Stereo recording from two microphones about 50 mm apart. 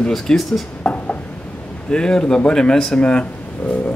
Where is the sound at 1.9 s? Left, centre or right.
Centre.